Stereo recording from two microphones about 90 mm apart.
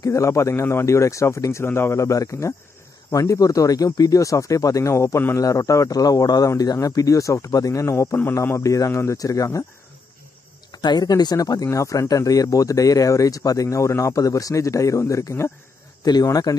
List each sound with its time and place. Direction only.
0.0 s speech: 35° left (ahead or behind)
10.7 s speech: 50° left (ahead or behind); by 15.5 s 35° left (ahead or behind)
16.0 s speech: 45° left (ahead or behind)